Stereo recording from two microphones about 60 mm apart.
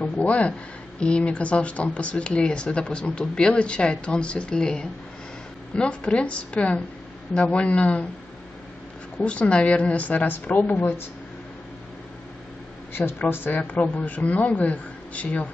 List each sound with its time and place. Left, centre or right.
0.0 s a woman's voice: left
9.2 s a woman's voice: centre
12.9 s a woman's voice: left
13.7 s a woman's voice: left